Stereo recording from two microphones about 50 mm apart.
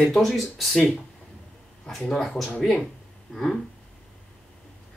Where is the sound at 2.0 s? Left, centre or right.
Centre.